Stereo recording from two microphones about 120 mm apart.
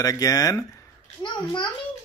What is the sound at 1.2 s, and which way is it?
Speech, 40° left (ahead or behind).